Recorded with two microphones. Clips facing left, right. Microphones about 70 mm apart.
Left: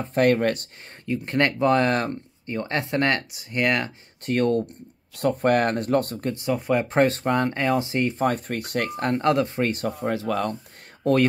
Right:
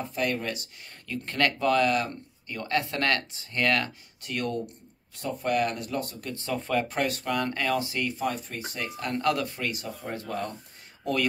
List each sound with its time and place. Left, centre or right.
0.1 s speech: left
1.0 s speech: left
4.2 s speech: left
5.1 s speech: left
6.3 s speech: centre
7.0 s speech: left
8.2 s speech: left
9.1 s speech: left
9.7 s speech: left
10.0 s speech: left